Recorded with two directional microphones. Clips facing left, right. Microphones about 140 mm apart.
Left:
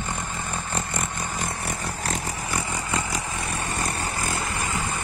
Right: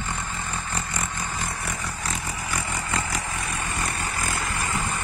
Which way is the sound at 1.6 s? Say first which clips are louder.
Left 2 dB; 35° left (ahead or behind).